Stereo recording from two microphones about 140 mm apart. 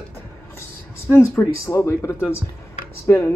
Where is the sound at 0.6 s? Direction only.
20° left (ahead or behind).